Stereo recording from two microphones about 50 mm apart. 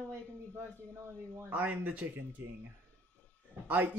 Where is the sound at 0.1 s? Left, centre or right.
Right.